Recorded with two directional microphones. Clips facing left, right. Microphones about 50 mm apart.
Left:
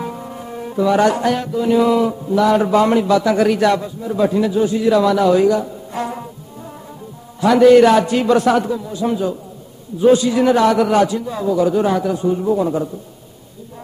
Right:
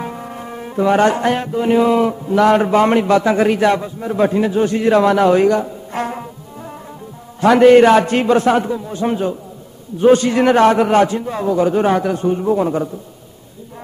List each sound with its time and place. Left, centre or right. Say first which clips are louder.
0.0 s music: even; right
2.0 s a man's voice: right 2 dB; right
2.6 s a man's voice: right 1 dB; right
3.3 s a man's voice: right 1 dB; right
4.0 s a man's voice: right 2 dB; right
4.6 s a man's voice: right 2 dB; right
7.3 s a man's voice: right 1 dB; right
8.3 s a man's voice: even; right
8.9 s a man's voice: right 1 dB; right
9.9 s a man's voice: right 1 dB; right